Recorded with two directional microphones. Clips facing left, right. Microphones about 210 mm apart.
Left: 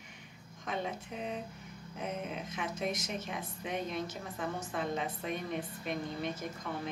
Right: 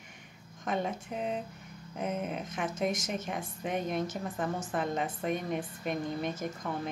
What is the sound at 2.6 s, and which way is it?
A woman's voice, 50° right (ahead or behind).